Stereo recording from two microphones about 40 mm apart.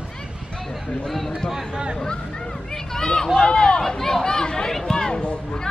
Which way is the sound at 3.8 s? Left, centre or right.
Centre.